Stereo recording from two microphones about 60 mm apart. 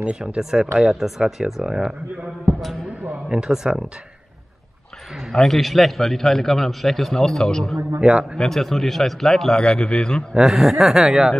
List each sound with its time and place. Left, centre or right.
0.0 s speech: centre
3.3 s speech: centre
5.3 s a man's voice: centre
8.0 s speech: centre
8.4 s a man's voice: centre
10.3 s speech: centre